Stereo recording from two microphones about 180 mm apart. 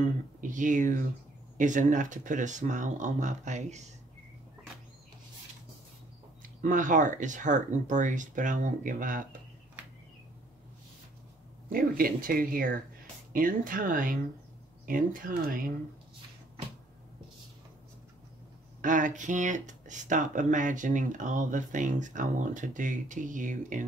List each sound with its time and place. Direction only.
0.4 s speech: 45° right (ahead or behind)
6.6 s speech: 45° right (ahead or behind)
11.7 s speech: 50° right (ahead or behind)
18.8 s speech: 45° right (ahead or behind)